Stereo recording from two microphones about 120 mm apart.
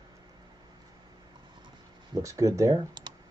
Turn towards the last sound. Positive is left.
turn(degrees=-30)  # may be behind; listen again after turning